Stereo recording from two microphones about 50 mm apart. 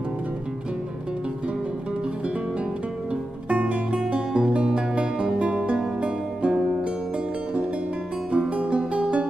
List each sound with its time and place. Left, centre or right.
3.4 s music: right
8.3 s music: right